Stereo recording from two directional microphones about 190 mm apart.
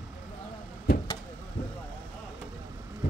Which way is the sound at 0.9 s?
55° left (ahead or behind).